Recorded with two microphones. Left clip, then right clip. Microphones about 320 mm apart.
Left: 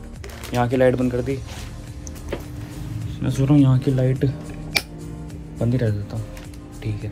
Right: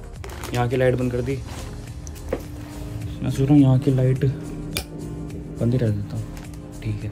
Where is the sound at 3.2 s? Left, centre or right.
Centre.